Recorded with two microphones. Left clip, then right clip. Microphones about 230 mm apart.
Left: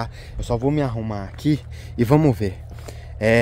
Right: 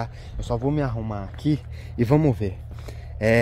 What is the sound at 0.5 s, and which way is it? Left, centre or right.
Speech, centre.